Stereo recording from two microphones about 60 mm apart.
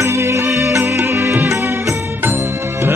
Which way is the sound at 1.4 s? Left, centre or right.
Right.